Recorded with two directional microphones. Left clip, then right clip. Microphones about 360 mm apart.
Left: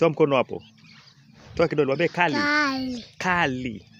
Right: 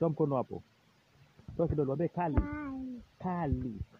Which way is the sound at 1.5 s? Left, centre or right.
Right.